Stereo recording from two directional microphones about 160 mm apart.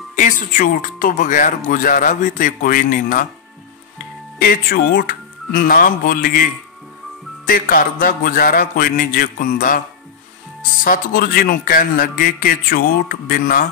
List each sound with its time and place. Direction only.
0.1 s speech: 50° left (ahead or behind)
4.4 s speech: 65° left (ahead or behind)
10.8 s speech: 60° left (ahead or behind)